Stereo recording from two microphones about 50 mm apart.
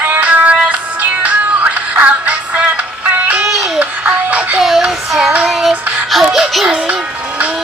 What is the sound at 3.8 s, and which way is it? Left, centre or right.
Music, right.